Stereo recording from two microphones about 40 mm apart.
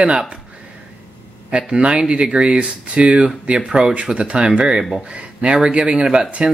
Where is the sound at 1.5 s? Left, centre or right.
Right.